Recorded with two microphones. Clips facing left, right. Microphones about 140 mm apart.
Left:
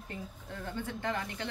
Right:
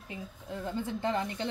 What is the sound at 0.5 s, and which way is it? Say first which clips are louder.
Speech: right 4 dB; 20° right (ahead or behind).